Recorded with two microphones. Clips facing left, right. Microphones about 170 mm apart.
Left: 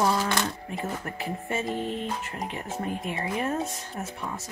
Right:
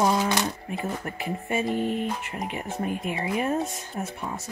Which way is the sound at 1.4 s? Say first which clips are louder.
Right 4 dB; 15° right (ahead or behind).